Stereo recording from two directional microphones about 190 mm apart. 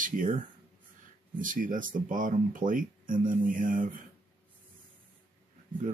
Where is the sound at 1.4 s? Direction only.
45° right (ahead or behind).